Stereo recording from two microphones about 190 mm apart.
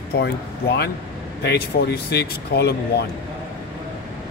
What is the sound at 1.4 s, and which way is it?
Speech, 60° left (ahead or behind).